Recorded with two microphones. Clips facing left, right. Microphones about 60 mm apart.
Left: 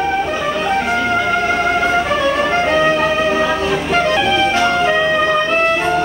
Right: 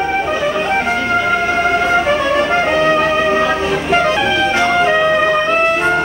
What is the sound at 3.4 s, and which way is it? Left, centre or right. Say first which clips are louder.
Vehicle: right 1 dB; centre.